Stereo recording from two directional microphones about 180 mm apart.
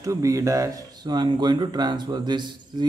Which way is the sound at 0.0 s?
20° right (ahead or behind).